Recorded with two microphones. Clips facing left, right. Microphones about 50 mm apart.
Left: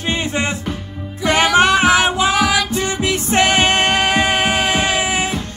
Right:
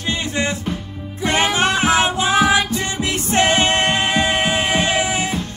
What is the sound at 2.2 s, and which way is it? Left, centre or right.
Music, right.